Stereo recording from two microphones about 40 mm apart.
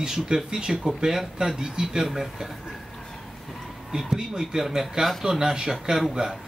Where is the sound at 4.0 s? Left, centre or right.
Centre.